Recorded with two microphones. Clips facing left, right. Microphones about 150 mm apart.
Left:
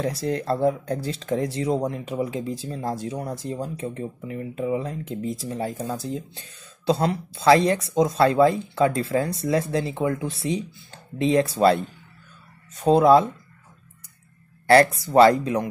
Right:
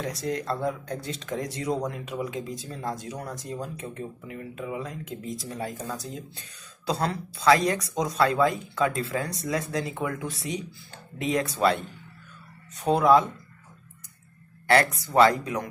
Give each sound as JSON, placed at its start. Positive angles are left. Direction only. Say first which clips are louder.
{"t": 0.0, "sound": "speech", "louder": "left 4 dB", "side_deg": 30}
{"t": 12.8, "sound": "speech", "louder": "left 4 dB", "side_deg": 30}
{"t": 14.7, "sound": "speech", "louder": "left 6 dB", "side_deg": 30}